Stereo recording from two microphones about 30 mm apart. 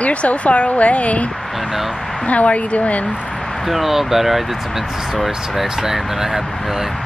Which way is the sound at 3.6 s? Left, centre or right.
Centre.